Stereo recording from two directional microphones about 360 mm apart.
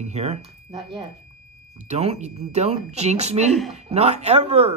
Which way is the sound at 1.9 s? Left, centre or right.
Centre.